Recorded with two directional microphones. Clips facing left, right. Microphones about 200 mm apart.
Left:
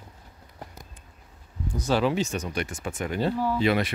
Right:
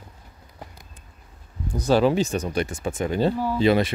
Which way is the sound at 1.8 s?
40° right (ahead or behind).